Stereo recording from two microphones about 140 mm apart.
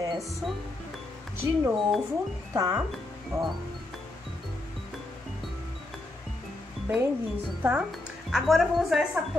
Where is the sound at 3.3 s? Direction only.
20° right (ahead or behind).